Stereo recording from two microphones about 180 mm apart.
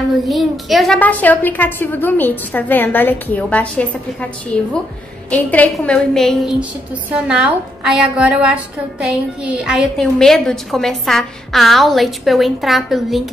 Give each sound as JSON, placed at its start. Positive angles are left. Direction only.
{"t": 0.3, "sound": "a woman's voice", "side_deg": 0}